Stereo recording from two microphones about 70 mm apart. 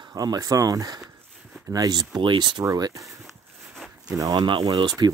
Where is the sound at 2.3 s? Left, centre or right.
Right.